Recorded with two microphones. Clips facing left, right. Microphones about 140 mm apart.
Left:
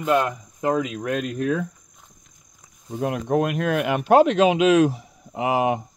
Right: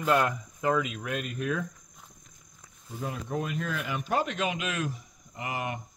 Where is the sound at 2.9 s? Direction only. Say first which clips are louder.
Left 11 dB; 70° left (ahead or behind).